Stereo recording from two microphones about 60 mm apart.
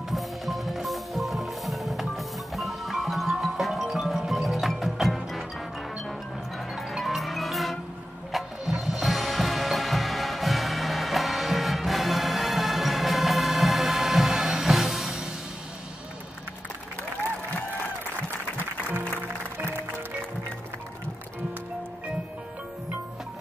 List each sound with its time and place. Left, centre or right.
0.1 s music: centre
6.7 s music: centre
18.9 s music: right